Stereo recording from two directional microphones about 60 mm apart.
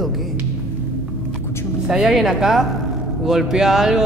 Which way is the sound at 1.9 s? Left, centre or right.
Centre.